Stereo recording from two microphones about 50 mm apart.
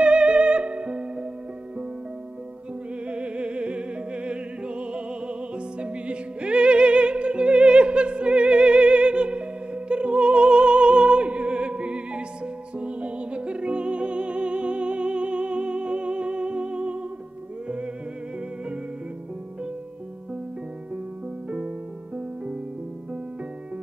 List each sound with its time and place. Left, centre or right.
0.0 s music: right
3.1 s music: right
21.5 s music: right